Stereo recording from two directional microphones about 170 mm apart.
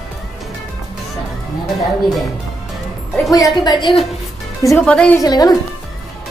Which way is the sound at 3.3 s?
25° left (ahead or behind).